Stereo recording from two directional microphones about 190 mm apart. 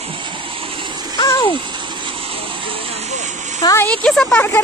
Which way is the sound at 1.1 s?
20° left (ahead or behind).